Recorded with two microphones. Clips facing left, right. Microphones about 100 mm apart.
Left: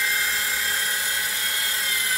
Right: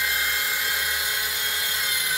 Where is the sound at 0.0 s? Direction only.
Centre (ahead or behind).